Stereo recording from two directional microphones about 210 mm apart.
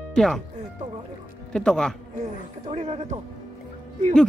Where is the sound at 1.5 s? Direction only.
5° left (ahead or behind).